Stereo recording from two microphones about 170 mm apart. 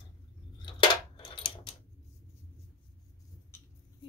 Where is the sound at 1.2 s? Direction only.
30° left (ahead or behind).